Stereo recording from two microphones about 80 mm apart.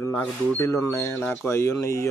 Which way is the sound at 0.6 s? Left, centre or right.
Left.